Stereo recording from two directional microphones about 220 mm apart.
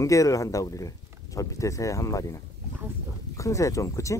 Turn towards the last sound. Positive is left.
turn(degrees=15)  # may be behind; listen again after turning